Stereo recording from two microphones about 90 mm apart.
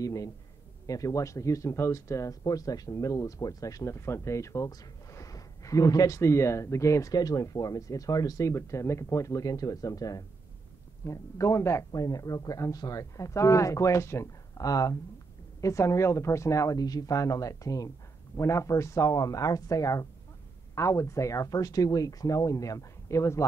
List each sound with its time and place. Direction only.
0.0 s speech: 40° left (ahead or behind)